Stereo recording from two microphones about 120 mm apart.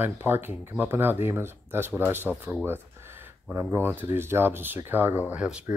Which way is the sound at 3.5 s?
15° right (ahead or behind).